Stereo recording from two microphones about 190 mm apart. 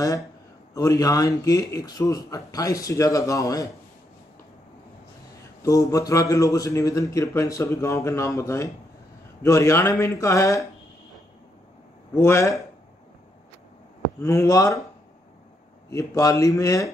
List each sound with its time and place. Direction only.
0.7 s a man's voice: 20° left (ahead or behind)
5.6 s a man's voice: 15° left (ahead or behind)
12.1 s a man's voice: 15° left (ahead or behind)
14.2 s a man's voice: 15° left (ahead or behind)
15.9 s a man's voice: 15° left (ahead or behind)